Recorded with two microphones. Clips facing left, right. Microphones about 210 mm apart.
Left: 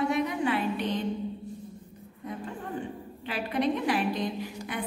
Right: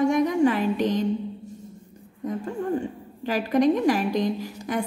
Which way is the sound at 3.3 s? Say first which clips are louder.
Right 8 dB; 45° right (ahead or behind).